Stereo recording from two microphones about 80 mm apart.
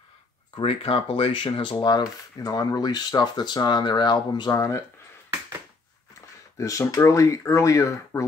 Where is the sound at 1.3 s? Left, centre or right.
Left.